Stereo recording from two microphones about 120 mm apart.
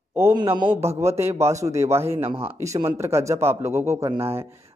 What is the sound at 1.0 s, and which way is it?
Speech, 25° right (ahead or behind).